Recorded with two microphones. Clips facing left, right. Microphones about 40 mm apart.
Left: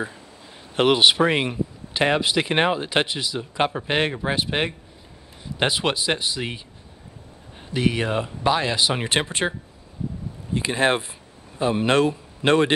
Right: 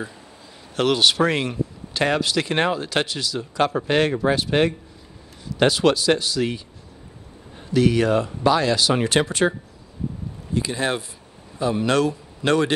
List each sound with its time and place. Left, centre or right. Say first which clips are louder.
0.7 s speech: left 2 dB; left
7.7 s speech: right 5 dB; left
10.5 s a man's voice: left 3 dB; left